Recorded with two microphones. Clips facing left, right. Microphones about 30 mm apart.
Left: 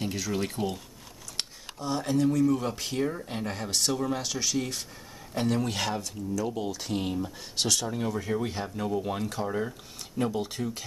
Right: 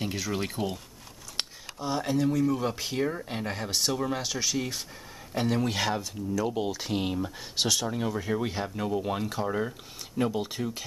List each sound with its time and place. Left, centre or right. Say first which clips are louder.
0.0 s speech: left 1 dB; centre
7.5 s speech: right 1 dB; centre